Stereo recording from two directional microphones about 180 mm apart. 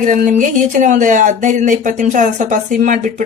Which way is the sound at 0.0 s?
45° right (ahead or behind).